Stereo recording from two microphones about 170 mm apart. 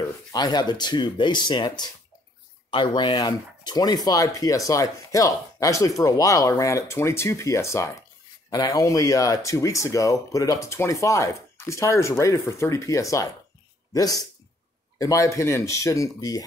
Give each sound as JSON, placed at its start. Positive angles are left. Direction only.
{"t": 0.0, "sound": "speech", "side_deg": 25}